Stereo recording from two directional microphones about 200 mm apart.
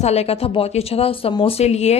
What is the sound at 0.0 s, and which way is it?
A woman's voice, 30° left (ahead or behind).